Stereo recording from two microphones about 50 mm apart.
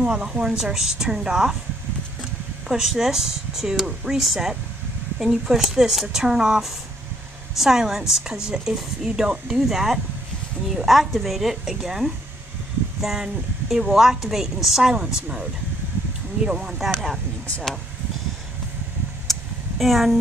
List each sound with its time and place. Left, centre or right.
0.0 s a woman's voice: centre
2.7 s a woman's voice: centre
14.9 s a woman's voice: centre
16.4 s a woman's voice: centre
19.3 s a sound: centre
19.8 s a woman's voice: centre